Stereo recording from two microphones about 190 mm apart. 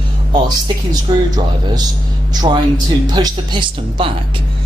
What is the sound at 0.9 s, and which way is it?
Speech, 20° right (ahead or behind).